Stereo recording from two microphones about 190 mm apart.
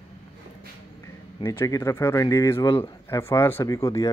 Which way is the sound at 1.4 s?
15° left (ahead or behind).